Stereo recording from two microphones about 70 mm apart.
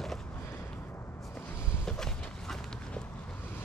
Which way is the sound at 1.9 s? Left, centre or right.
Centre.